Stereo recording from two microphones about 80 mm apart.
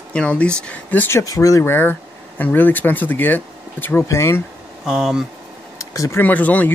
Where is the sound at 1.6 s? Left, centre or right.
Left.